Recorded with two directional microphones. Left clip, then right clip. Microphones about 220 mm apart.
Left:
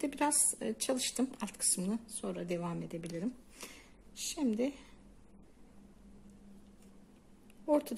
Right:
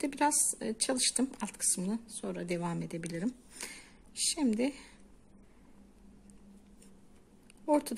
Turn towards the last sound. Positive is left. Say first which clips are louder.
# right 2 dB
turn(degrees=-15)  # may be behind; listen again after turning